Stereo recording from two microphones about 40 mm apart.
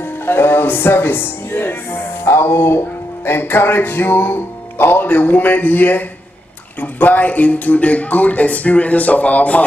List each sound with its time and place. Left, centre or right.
0.0 s speech: left
2.2 s speech: left
5.0 s speech: left